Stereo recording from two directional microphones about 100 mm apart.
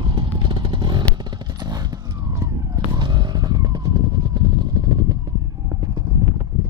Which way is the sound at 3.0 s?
50° right (ahead or behind).